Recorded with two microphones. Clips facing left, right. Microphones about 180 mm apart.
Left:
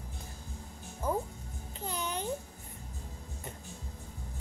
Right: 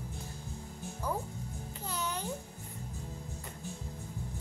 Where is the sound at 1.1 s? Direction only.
20° left (ahead or behind).